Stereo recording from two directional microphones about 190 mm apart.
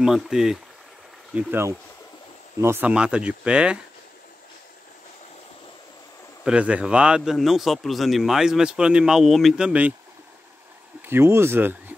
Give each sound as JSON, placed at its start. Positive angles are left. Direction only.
{"t": 0.0, "sound": "a man's voice", "side_deg": -5}
{"t": 6.4, "sound": "a man's voice", "side_deg": -5}
{"t": 11.1, "sound": "speech", "side_deg": -10}